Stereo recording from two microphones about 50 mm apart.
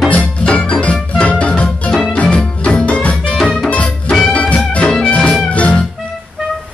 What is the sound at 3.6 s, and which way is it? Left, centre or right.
Music, left.